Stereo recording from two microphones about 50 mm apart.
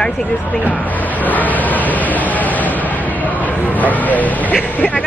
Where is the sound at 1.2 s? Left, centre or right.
Left.